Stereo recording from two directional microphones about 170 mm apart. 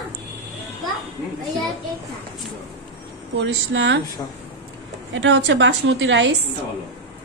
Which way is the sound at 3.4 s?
90° right.